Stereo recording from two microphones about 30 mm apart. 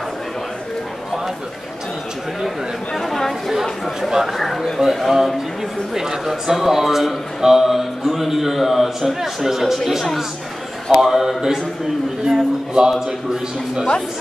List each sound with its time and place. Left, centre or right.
2.9 s chatter: centre
4.1 s a man's voice: centre
10.9 s a man's voice: centre
12.3 s a man's voice: right